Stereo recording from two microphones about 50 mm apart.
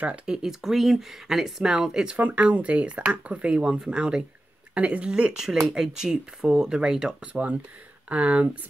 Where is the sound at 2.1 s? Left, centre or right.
Right.